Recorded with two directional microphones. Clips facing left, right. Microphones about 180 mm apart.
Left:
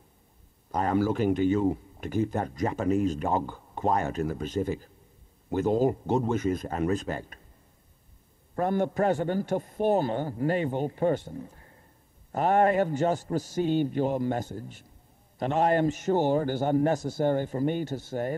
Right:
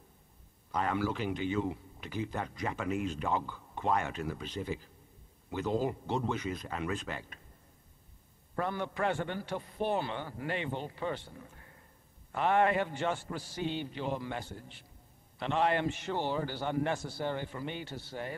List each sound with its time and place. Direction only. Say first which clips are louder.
0.7 s speech: left 7 dB; 40° left (ahead or behind)
8.5 s speech: left 8 dB; 45° left (ahead or behind)